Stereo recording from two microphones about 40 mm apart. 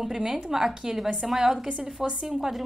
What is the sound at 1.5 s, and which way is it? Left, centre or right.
A woman's voice, centre.